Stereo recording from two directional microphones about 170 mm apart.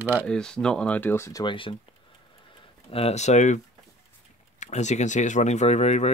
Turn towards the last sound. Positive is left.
turn(degrees=40)  # may be behind; listen again after turning